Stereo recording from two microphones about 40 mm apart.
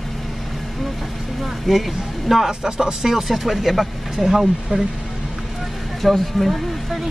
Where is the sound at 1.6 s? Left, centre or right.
Centre.